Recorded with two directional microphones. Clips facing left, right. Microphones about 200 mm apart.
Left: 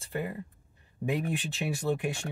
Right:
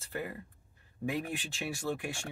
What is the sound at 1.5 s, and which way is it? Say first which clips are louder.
Speech: left 4 dB; 20° left (ahead or behind).